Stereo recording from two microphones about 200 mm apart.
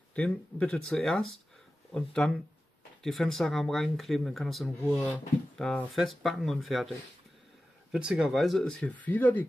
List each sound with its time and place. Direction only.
0.1 s speech: 5° left (ahead or behind)
7.9 s speech: 5° right (ahead or behind)